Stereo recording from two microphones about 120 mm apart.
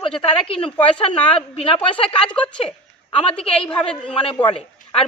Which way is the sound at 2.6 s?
55° left (ahead or behind).